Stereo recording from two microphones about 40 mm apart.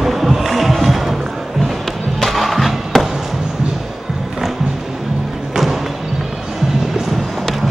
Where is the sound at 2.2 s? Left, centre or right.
Centre.